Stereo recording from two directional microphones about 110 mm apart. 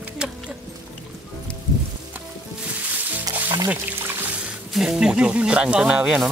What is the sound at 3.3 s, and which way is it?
Music, 35° right (ahead or behind).